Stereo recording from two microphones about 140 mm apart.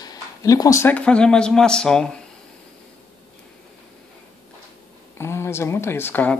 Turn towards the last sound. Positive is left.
turn(degrees=15)  # may be behind; listen again after turning